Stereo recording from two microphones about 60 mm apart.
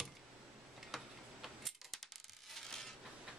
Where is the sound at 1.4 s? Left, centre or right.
Centre.